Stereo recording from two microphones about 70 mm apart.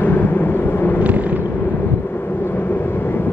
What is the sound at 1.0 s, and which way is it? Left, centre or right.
Vehicle, right.